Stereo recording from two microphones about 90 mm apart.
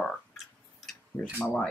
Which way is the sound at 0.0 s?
5° left (ahead or behind).